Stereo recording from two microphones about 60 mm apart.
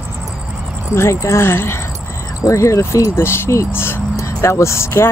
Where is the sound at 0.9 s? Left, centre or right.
Left.